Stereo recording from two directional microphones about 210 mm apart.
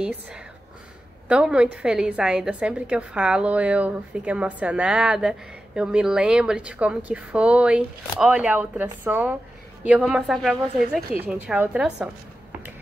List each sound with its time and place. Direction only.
1.3 s a woman's voice: 5° right (ahead or behind)
10.8 s a woman's voice: 45° right (ahead or behind)
11.1 s a woman's voice: 10° right (ahead or behind)